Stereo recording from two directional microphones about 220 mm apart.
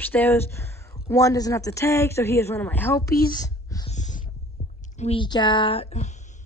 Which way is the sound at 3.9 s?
35° left (ahead or behind).